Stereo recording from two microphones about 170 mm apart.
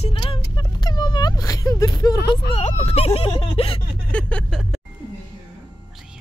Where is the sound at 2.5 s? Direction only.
35° left (ahead or behind).